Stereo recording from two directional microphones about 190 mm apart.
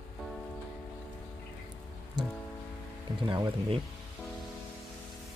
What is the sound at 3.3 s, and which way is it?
Speech, 25° right (ahead or behind).